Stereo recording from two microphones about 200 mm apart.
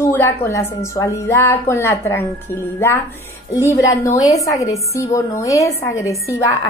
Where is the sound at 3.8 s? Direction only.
15° left (ahead or behind).